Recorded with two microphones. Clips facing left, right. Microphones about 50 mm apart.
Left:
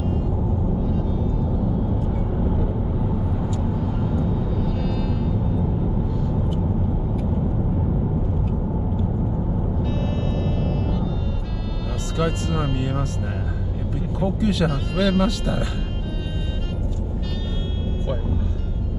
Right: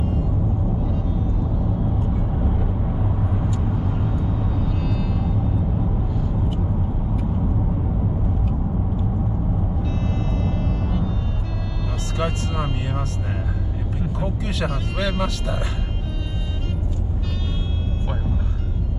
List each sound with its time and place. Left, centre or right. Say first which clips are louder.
4.7 s music: left 1 dB; right
12.4 s vehicle: left 2 dB; centre
14.2 s speech: left 7 dB; centre